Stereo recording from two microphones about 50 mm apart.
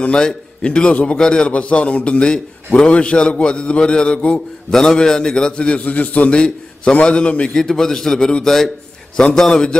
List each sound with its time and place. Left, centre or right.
0.0 s a man's voice: centre